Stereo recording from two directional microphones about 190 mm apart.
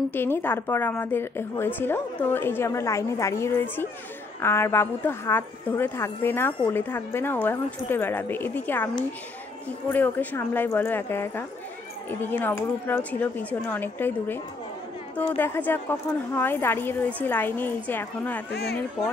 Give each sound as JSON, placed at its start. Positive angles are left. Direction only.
{"t": 0.1, "sound": "speech", "side_deg": 10}
{"t": 18.5, "sound": "speech", "side_deg": 55}